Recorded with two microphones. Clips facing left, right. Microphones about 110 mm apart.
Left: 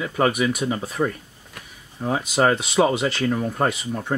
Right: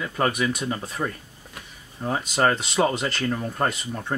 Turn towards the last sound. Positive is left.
turn(degrees=10)  # may be behind; listen again after turning